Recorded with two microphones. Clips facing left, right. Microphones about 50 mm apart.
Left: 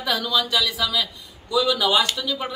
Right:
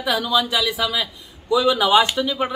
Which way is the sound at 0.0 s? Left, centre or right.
Centre.